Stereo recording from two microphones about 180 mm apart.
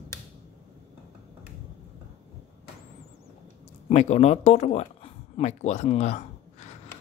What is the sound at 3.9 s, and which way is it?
Speech, 35° left (ahead or behind).